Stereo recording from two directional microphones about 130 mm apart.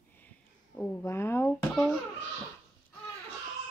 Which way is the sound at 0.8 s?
20° left (ahead or behind).